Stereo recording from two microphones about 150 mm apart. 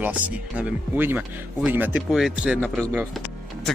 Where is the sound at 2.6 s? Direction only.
5° left (ahead or behind).